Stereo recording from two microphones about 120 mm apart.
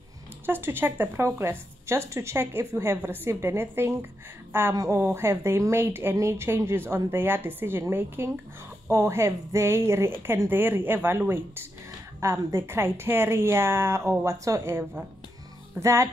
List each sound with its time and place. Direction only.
0.5 s a woman's voice: 20° right (ahead or behind)